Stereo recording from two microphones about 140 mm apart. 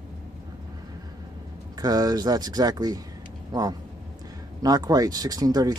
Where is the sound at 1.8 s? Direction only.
30° right (ahead or behind).